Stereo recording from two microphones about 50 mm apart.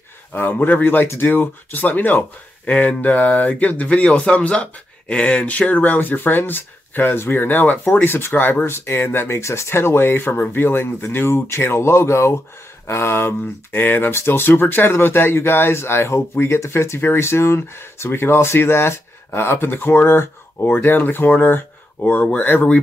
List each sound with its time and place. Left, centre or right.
0.3 s speech: left
9.4 s speech: left
12.8 s speech: left